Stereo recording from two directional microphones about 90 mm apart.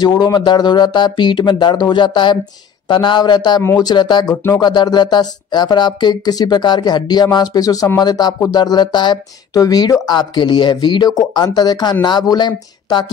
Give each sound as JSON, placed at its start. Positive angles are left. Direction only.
{"t": 0.0, "sound": "speech", "side_deg": 50}